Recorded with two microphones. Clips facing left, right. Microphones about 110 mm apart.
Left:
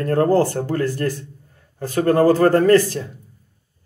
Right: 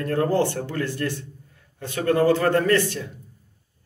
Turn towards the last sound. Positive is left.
turn(degrees=35)  # may be behind; listen again after turning